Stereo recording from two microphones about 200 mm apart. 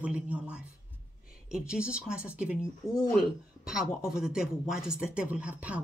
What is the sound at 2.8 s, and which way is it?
Speech, 15° left (ahead or behind).